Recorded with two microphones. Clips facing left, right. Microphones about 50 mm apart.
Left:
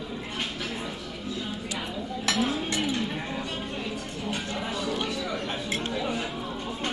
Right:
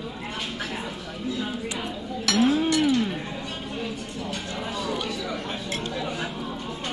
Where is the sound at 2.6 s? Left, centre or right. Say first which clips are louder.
Right 7 dB; left.